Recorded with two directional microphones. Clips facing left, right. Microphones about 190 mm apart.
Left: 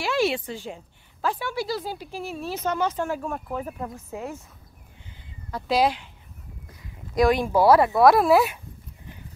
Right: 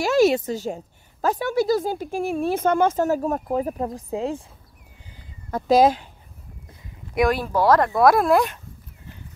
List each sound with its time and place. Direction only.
0.0 s a woman's voice: 45° right (ahead or behind)
5.1 s a sound: 45° right (ahead or behind)
7.4 s speech: 10° left (ahead or behind)